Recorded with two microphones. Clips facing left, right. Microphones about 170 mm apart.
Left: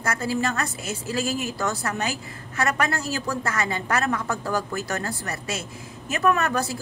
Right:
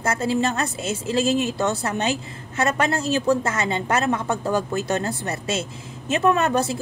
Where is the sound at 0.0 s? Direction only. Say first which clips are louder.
Right 4 dB; 25° right (ahead or behind).